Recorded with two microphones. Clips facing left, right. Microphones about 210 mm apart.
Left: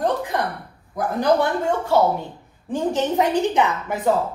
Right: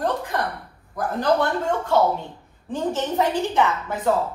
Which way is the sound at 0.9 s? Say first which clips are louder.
Left 2 dB; 10° left (ahead or behind).